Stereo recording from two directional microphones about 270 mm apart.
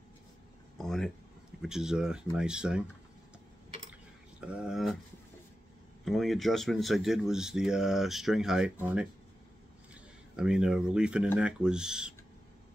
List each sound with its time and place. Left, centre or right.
0.7 s speech: centre
4.4 s speech: centre
6.0 s speech: centre
10.3 s speech: centre